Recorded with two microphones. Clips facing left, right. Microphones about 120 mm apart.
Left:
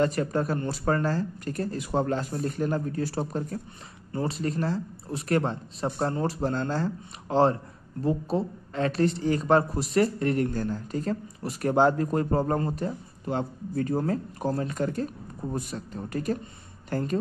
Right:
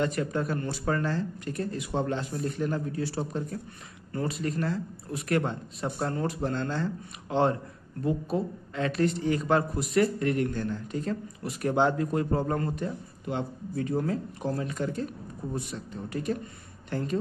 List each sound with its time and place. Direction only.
0.0 s a woman's voice: 35° left (ahead or behind)
4.1 s a woman's voice: 30° left (ahead or behind)